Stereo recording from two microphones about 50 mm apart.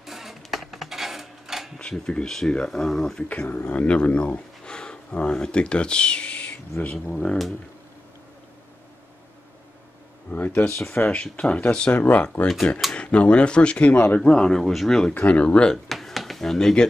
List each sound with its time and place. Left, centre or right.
0.0 s a sound: centre
1.8 s speech: centre
3.3 s speech: left
7.1 s speech: centre
10.3 s speech: left
10.6 s speech: centre
11.3 s speech: left
14.6 s speech: centre
15.1 s speech: left
15.7 s a sound: centre